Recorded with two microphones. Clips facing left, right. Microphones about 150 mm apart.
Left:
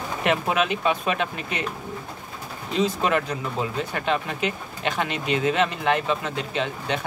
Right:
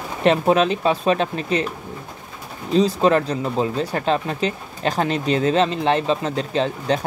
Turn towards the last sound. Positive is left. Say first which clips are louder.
# right 6 dB
turn(degrees=-35)  # may be behind; listen again after turning